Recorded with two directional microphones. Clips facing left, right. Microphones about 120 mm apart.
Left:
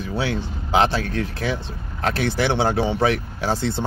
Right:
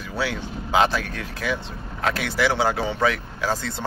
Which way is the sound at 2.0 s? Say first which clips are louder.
Left 2 dB; 35° left (ahead or behind).